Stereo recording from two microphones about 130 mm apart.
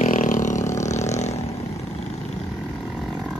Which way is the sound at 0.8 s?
65° left (ahead or behind).